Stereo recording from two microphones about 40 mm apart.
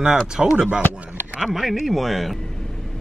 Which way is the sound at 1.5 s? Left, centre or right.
Centre.